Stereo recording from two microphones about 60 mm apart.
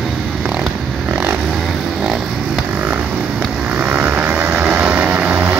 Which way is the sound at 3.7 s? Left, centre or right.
Right.